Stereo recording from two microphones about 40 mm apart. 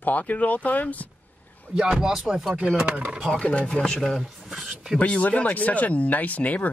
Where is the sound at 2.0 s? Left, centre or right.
Centre.